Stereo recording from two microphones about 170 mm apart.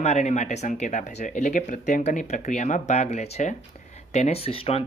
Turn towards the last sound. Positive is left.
turn(degrees=35)  # may be behind; listen again after turning